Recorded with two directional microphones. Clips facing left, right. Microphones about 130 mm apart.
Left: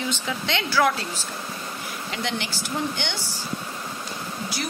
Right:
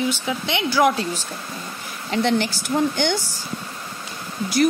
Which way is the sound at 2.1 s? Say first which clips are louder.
Right 10 dB; 40° right (ahead or behind).